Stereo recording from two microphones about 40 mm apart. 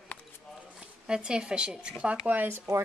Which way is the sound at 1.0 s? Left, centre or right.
Centre.